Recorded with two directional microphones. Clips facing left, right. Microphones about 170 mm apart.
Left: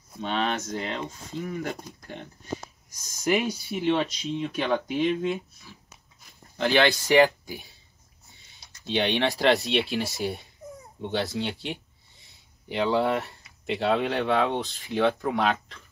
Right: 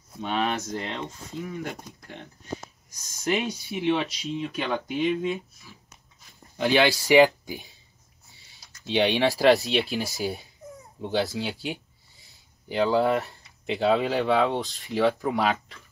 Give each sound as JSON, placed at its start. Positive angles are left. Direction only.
{"t": 0.2, "sound": "speech", "side_deg": -5}
{"t": 6.5, "sound": "speech", "side_deg": -10}
{"t": 8.9, "sound": "speech", "side_deg": -5}